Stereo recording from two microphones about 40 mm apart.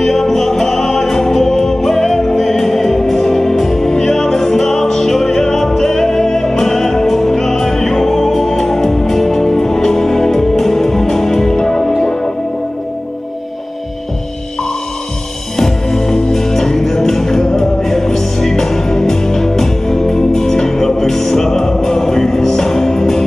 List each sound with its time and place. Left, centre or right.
0.0 s music: centre
15.5 s music: centre